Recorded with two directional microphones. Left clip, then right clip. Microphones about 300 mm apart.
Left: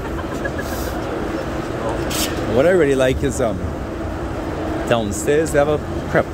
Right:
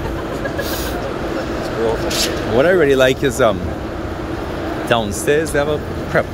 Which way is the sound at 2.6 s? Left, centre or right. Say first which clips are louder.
Right 2 dB; centre.